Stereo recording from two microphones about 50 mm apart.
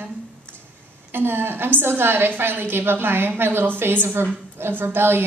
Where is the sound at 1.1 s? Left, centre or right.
Right.